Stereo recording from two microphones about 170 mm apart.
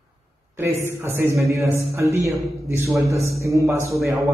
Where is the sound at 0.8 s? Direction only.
15° right (ahead or behind).